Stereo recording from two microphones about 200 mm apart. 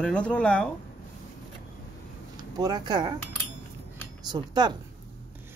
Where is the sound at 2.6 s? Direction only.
20° right (ahead or behind).